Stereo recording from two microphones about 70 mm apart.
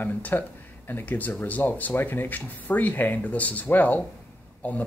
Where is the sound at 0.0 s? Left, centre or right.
Left.